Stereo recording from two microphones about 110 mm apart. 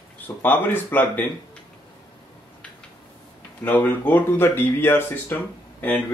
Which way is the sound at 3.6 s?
15° left (ahead or behind).